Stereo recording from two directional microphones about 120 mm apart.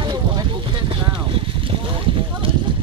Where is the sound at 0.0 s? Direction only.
40° right (ahead or behind).